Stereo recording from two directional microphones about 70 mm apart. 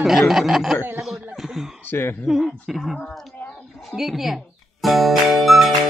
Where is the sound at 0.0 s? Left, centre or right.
Centre.